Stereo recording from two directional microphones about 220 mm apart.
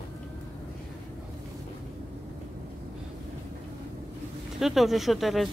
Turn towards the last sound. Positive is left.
turn(degrees=0)  # may be behind; listen again after turning